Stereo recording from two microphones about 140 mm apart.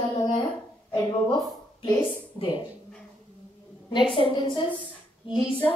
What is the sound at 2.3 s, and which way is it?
Speech, 35° left (ahead or behind).